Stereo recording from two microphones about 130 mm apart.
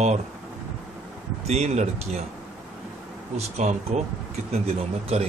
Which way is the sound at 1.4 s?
60° right (ahead or behind).